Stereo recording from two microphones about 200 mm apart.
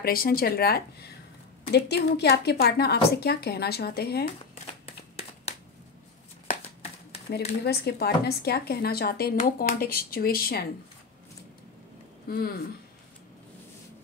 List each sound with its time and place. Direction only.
0.0 s a woman's voice: 45° left (ahead or behind)
4.8 s a sound: 30° left (ahead or behind)
7.6 s a woman's voice: 55° left (ahead or behind)
12.3 s a woman's voice: 50° left (ahead or behind)